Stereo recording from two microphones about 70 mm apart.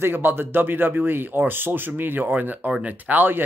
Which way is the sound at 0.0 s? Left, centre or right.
Right.